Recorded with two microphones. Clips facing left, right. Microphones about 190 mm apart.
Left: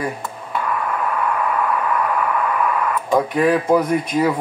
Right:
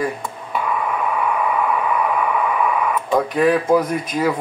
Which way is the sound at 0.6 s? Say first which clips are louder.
Right 1 dB; 10° right (ahead or behind).